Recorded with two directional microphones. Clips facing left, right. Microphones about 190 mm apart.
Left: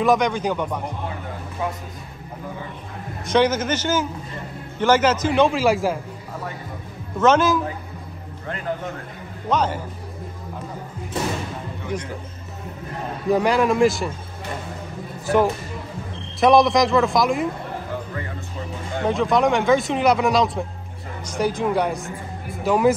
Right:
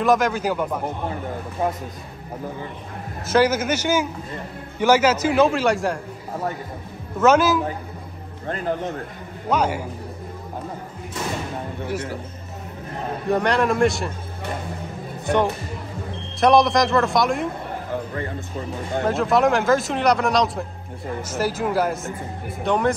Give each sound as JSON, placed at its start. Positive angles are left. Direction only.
{"t": 0.0, "sound": "speech", "side_deg": 0}
{"t": 3.3, "sound": "a man's voice", "side_deg": -5}
{"t": 7.2, "sound": "a man's voice", "side_deg": -10}
{"t": 9.5, "sound": "a man's voice", "side_deg": -10}
{"t": 11.9, "sound": "a man's voice", "side_deg": -5}
{"t": 13.3, "sound": "speech", "side_deg": 0}
{"t": 16.3, "sound": "speech", "side_deg": 0}
{"t": 19.0, "sound": "speech", "side_deg": -5}